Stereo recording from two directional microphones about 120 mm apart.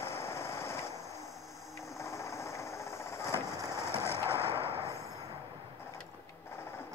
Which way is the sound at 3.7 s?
25° left (ahead or behind).